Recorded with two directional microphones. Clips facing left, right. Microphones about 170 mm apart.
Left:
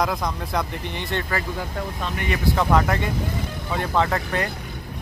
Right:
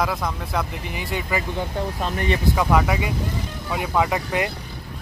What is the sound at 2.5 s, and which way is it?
Speech, 10° right (ahead or behind).